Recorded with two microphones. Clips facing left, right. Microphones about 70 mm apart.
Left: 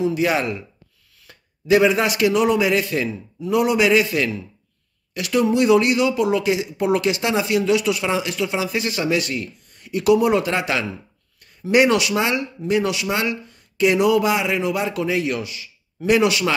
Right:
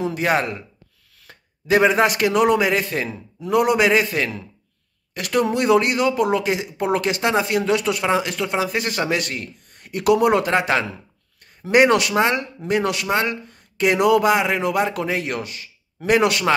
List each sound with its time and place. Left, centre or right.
0.0 s a man's voice: right
3.3 s speech: right